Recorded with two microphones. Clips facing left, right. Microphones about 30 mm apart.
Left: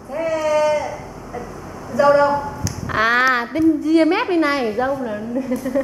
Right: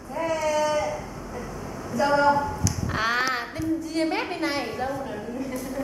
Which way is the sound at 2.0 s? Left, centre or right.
Centre.